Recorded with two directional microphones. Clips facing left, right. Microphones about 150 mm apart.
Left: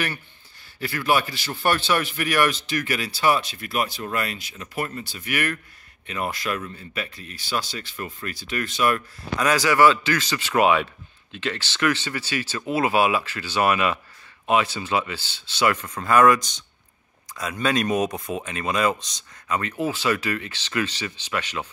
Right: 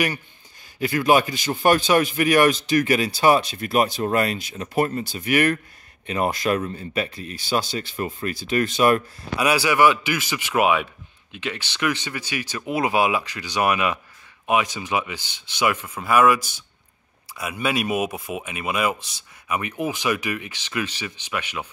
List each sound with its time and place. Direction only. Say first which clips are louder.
0.7 s a man's voice: right 5 dB; 15° right (ahead or behind)
4.0 s a man's voice: right 7 dB; 35° right (ahead or behind); by 21.6 s 10° right (ahead or behind)